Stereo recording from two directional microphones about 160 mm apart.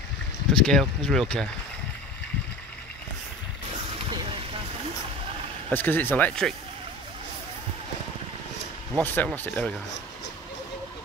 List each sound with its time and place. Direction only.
0.5 s speech: 5° left (ahead or behind)
5.7 s speech: 10° left (ahead or behind)
9.0 s speech: 10° left (ahead or behind)